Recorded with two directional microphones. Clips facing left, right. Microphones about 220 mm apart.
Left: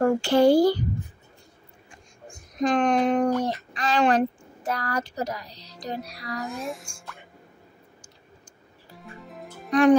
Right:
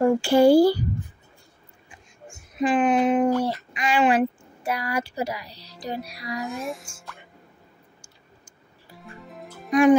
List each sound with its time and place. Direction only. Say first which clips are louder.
0.0 s a woman's voice: right 2 dB; 10° right (ahead or behind)
1.9 s a sound: right 1 dB; 5° right (ahead or behind)
3.7 s a woman's voice: right 1 dB; 10° right (ahead or behind)
6.4 s speech: right 1 dB; centre (ahead or behind)
9.0 s music: even; centre (ahead or behind)